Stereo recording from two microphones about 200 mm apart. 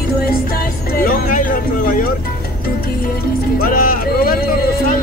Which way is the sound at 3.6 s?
45° left (ahead or behind).